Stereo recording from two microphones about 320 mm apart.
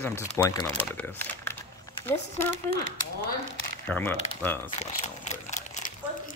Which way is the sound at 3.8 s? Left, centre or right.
Centre.